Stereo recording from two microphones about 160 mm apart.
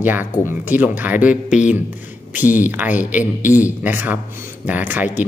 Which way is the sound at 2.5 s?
10° right (ahead or behind).